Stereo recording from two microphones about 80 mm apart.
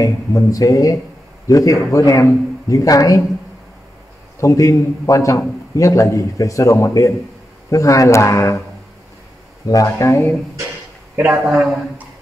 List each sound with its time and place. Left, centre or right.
0.0 s a man's voice: left
4.4 s a man's voice: left
9.7 s a man's voice: left
11.2 s a man's voice: centre